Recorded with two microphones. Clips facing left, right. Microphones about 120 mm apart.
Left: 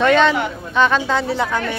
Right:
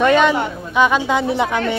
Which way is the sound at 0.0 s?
10° right (ahead or behind).